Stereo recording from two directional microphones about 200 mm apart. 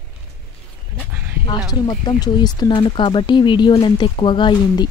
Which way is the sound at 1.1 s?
10° right (ahead or behind).